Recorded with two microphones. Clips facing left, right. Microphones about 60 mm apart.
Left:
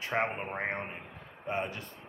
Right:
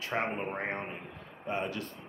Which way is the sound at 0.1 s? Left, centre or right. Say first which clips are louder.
Left 2 dB; centre.